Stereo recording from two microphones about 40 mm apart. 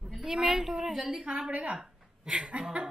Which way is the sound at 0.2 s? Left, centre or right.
Centre.